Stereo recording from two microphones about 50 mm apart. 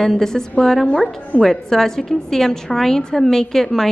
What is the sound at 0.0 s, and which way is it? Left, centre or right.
A woman's voice, centre.